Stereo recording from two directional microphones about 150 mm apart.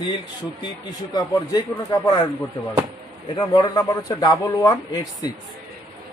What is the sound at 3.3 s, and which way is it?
A man's voice, 25° left (ahead or behind).